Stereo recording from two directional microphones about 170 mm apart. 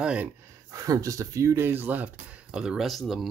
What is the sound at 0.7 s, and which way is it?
Speech, 20° right (ahead or behind).